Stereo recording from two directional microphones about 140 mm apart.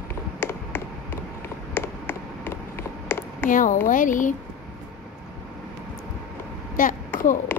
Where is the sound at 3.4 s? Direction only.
70° left (ahead or behind).